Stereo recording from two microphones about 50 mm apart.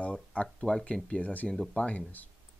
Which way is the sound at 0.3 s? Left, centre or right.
Left.